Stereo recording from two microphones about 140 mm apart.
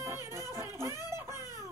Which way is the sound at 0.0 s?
20° right (ahead or behind).